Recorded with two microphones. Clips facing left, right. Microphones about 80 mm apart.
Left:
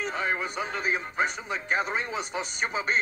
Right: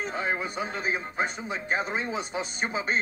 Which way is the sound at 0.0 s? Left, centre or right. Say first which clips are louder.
Even; right.